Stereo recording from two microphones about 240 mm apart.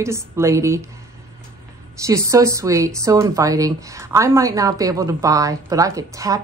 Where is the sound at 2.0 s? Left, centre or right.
Centre.